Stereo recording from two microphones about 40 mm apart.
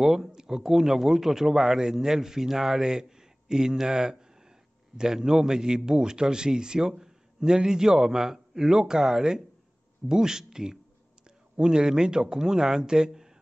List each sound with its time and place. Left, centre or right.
0.0 s a man's voice: centre